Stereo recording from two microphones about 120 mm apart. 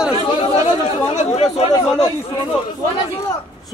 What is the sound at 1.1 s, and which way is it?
Speech, 70° left (ahead or behind).